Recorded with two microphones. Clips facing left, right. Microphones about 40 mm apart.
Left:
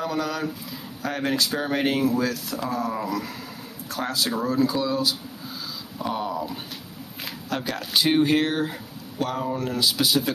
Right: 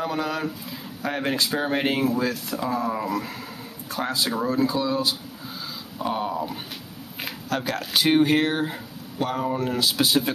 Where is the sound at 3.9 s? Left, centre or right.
Right.